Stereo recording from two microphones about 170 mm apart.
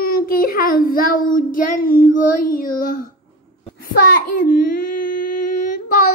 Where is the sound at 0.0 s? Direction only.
60° left (ahead or behind).